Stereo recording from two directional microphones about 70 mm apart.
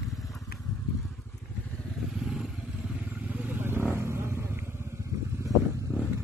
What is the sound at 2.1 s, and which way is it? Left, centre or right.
Vehicle, centre.